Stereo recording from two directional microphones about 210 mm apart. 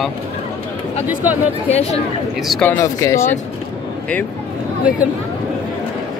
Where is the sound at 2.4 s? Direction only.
5° left (ahead or behind).